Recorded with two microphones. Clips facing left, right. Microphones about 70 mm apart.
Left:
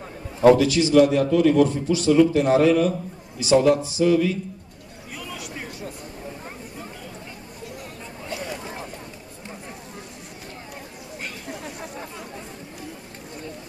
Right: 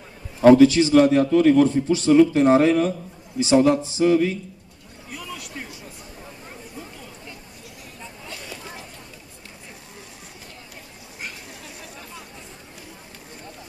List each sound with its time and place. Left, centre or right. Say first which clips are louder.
0.4 s a man's voice: right 3 dB; right
5.1 s a sound: even; centre
11.6 s chatter: left 6 dB; left